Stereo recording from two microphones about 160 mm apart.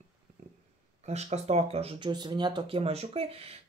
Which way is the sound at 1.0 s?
45° right (ahead or behind).